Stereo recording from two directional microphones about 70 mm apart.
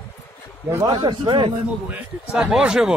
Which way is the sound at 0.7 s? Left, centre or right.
Right.